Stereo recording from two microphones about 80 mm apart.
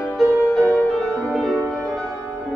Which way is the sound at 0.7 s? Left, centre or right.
Left.